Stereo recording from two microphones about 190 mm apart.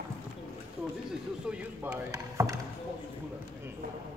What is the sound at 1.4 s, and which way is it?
Speech, 5° right (ahead or behind).